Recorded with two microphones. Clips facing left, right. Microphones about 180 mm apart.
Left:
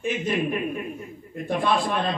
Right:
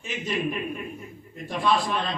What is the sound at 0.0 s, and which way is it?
A man's voice, 55° left (ahead or behind).